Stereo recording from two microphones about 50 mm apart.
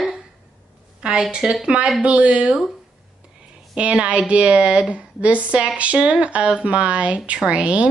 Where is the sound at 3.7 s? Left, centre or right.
Right.